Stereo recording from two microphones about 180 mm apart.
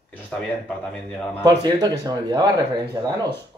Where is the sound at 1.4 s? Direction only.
20° right (ahead or behind).